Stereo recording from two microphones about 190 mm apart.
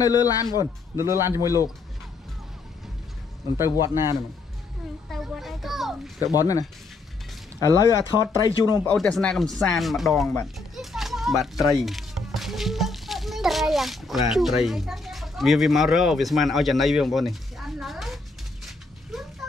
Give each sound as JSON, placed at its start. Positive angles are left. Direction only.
{"t": 0.0, "sound": "a man's voice", "side_deg": 20}
{"t": 0.6, "sound": "speech", "side_deg": -15}
{"t": 3.8, "sound": "speech", "side_deg": -15}
{"t": 5.1, "sound": "a child's voice", "side_deg": 0}
{"t": 6.2, "sound": "a man's voice", "side_deg": 20}
{"t": 7.6, "sound": "speech", "side_deg": 15}
{"t": 8.8, "sound": "speech", "side_deg": 5}
{"t": 10.8, "sound": "a sound", "side_deg": 0}
{"t": 14.3, "sound": "speech", "side_deg": 0}
{"t": 19.1, "sound": "a sound", "side_deg": 0}